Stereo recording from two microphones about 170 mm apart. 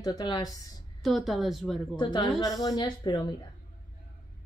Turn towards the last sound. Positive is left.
turn(degrees=25)  # may be behind; listen again after turning